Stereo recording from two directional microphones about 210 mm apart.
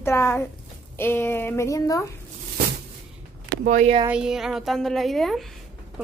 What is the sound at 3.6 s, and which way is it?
Speech, 40° right (ahead or behind).